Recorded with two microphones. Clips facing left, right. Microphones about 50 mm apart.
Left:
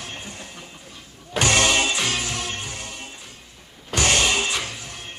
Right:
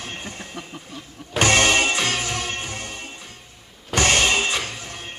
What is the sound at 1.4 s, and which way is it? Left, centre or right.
Music, right.